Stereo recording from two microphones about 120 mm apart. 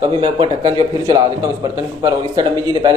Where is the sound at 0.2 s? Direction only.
40° right (ahead or behind).